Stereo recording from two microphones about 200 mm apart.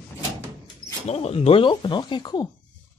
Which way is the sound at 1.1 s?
30° left (ahead or behind).